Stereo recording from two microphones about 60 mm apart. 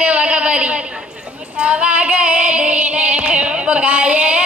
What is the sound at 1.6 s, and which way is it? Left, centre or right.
Female singing, centre.